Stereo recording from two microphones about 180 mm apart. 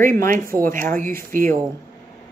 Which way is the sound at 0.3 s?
50° right (ahead or behind).